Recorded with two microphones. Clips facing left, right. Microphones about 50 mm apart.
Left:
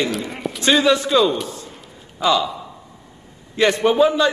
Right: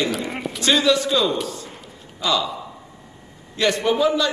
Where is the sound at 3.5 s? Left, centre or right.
Left.